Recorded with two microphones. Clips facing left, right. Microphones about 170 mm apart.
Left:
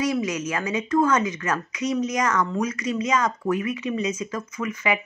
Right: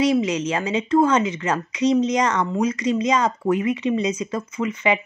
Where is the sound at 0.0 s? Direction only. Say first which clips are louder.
Right 5 dB; 30° right (ahead or behind).